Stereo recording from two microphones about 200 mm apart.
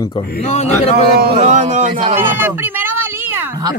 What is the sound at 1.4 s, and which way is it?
Speech, 35° right (ahead or behind).